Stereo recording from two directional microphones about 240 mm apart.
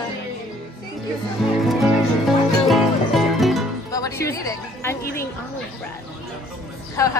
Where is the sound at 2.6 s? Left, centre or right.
Centre.